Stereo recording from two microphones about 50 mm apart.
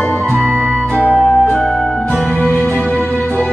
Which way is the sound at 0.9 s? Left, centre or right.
Left.